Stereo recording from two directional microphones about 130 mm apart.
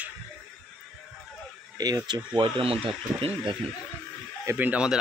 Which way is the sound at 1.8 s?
30° right (ahead or behind).